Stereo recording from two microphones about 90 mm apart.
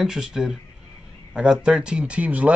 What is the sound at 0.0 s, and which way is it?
Speech, 5° right (ahead or behind).